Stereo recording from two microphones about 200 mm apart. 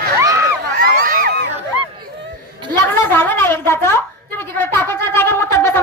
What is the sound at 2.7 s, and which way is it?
A woman's voice, 10° left (ahead or behind).